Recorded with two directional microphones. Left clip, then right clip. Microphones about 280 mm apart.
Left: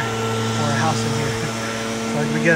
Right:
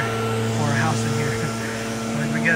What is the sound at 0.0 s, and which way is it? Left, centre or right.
Vehicle, centre.